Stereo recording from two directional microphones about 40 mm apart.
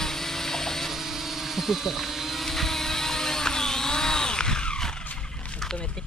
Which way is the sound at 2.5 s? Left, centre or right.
Centre.